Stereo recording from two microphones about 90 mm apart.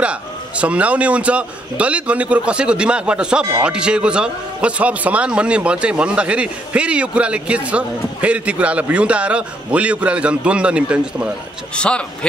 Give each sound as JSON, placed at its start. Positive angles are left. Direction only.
{"t": 0.0, "sound": "speech", "side_deg": -15}
{"t": 11.7, "sound": "a man's voice", "side_deg": 10}